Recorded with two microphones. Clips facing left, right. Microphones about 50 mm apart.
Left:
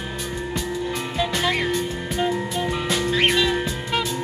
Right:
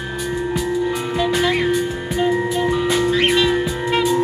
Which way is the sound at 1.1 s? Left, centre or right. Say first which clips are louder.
Right 4 dB; centre.